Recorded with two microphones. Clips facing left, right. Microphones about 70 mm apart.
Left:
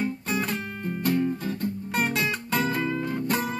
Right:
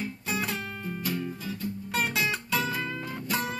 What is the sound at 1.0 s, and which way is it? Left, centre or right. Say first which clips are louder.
Music: left 9 dB; left.